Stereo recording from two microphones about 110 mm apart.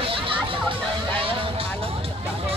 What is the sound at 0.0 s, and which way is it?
Music, 55° right (ahead or behind).